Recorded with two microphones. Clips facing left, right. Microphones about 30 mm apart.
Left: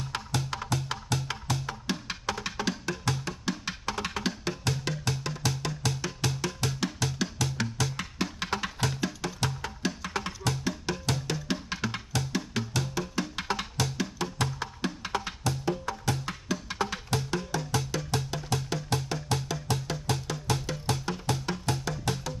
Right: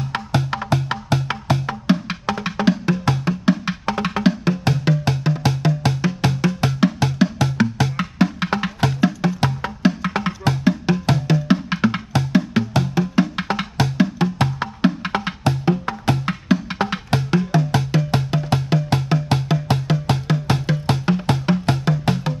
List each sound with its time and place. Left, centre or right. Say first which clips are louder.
0.1 s music: right 10 dB; right